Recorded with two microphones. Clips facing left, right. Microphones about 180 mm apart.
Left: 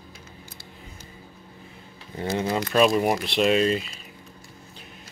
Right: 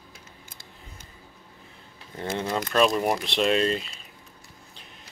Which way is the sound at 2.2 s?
5° left (ahead or behind).